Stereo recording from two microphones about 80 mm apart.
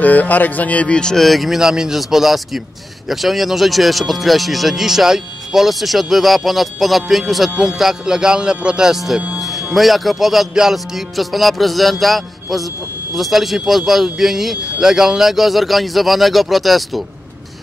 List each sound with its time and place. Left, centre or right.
0.0 s speech: centre